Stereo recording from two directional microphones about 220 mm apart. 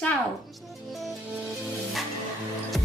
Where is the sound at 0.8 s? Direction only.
Centre (ahead or behind).